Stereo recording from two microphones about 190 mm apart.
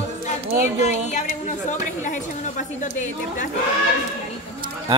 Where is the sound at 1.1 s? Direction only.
40° left (ahead or behind).